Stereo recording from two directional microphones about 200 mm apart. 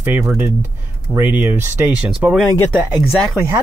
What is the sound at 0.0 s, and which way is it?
Speech, 10° right (ahead or behind).